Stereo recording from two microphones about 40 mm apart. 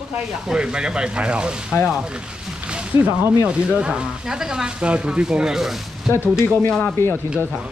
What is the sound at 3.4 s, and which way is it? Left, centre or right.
Speech, right.